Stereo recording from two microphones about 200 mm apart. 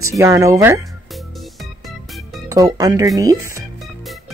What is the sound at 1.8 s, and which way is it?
Music, centre (ahead or behind).